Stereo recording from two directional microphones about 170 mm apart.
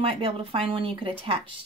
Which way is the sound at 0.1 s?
35° right (ahead or behind).